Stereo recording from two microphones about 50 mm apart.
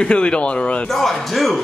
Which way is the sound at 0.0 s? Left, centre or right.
Left.